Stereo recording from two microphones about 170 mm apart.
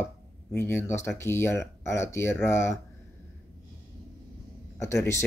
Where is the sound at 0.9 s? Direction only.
15° left (ahead or behind).